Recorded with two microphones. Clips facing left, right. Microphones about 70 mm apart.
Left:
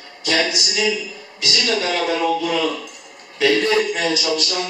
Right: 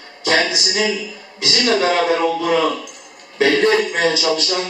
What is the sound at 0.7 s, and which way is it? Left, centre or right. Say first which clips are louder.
Speech: right 1 dB; right.